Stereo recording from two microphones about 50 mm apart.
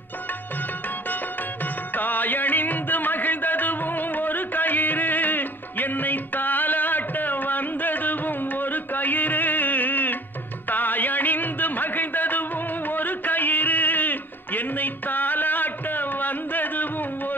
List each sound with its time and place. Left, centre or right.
1.0 s music: left